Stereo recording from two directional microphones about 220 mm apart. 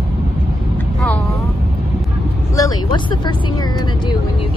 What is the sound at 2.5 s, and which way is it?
Vehicle, 15° left (ahead or behind).